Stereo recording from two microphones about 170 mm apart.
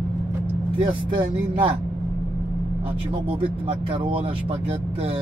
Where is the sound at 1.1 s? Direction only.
30° right (ahead or behind).